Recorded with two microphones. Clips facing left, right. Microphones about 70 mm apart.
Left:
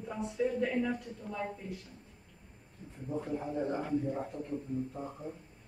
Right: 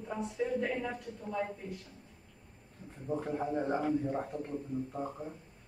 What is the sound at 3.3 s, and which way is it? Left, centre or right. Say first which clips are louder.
Speech: right 2 dB; right.